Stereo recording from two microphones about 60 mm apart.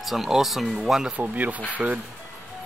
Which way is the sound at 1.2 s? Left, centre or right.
Right.